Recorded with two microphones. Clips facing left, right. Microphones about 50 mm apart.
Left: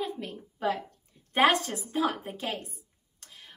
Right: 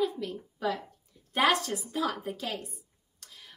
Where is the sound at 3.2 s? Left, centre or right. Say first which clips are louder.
Left 1 dB; left.